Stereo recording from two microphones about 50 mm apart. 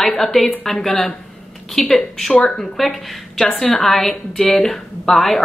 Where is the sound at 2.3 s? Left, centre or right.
Centre.